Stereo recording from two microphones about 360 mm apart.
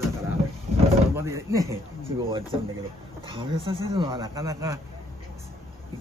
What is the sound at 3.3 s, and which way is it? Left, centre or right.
Speech, centre.